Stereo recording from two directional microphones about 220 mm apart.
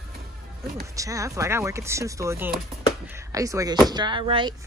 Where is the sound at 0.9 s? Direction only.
15° right (ahead or behind).